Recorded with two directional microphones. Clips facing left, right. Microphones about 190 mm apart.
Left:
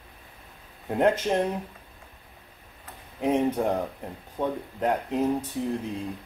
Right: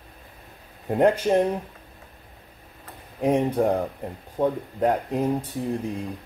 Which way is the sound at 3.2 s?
15° right (ahead or behind).